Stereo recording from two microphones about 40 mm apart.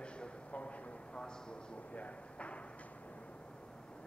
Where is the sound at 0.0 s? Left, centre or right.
Left.